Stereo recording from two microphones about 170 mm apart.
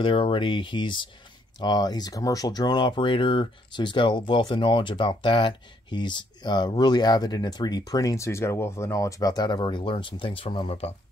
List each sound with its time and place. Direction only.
0.0 s speech: 30° left (ahead or behind)